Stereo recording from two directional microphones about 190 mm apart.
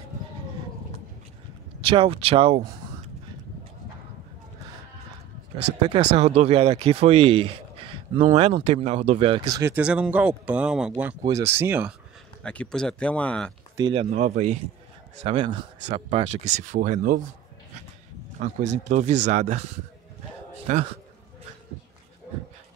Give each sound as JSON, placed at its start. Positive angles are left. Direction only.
{"t": 1.8, "sound": "speech", "side_deg": -30}
{"t": 5.8, "sound": "speech", "side_deg": -20}
{"t": 6.1, "sound": "speech", "side_deg": -35}
{"t": 9.6, "sound": "speech", "side_deg": -10}
{"t": 12.4, "sound": "speech", "side_deg": 5}
{"t": 13.7, "sound": "speech", "side_deg": -25}
{"t": 14.1, "sound": "speech", "side_deg": -40}
{"t": 15.2, "sound": "speech", "side_deg": -25}
{"t": 18.4, "sound": "speech", "side_deg": -40}
{"t": 20.7, "sound": "speech", "side_deg": -35}